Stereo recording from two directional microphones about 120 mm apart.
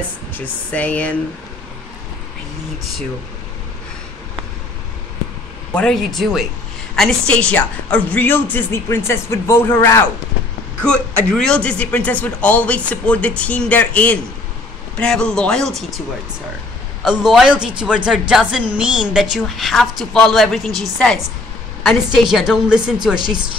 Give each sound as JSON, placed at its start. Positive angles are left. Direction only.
{"t": 0.3, "sound": "a man's voice", "side_deg": 15}
{"t": 5.8, "sound": "a woman's voice", "side_deg": 5}
{"t": 10.8, "sound": "a man's voice", "side_deg": 10}
{"t": 17.0, "sound": "a man's voice", "side_deg": -5}